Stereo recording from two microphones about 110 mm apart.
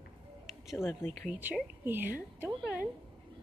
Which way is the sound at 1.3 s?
15° right (ahead or behind).